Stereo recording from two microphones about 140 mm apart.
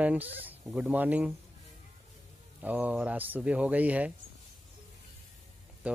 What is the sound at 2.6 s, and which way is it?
Speech, 10° right (ahead or behind).